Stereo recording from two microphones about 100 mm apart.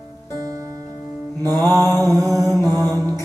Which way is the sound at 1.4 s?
35° right (ahead or behind).